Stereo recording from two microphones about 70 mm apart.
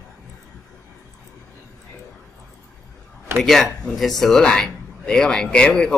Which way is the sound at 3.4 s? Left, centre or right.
Centre.